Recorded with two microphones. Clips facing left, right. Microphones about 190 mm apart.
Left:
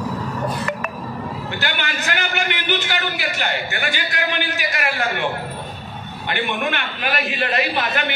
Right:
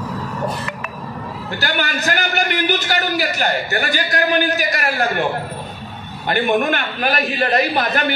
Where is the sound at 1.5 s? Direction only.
35° right (ahead or behind).